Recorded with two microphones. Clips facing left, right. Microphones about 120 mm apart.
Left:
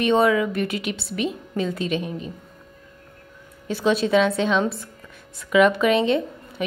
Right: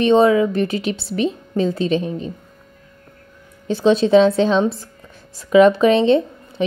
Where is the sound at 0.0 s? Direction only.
30° right (ahead or behind).